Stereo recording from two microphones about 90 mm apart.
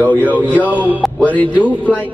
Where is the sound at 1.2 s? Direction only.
15° left (ahead or behind).